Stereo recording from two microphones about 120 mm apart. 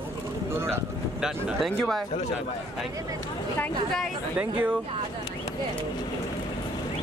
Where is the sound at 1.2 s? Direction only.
Centre (ahead or behind).